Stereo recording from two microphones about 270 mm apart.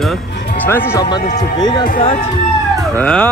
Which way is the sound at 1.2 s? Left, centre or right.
Left.